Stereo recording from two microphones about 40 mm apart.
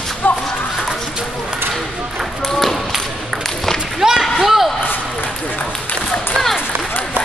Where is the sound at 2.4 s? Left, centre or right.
Centre.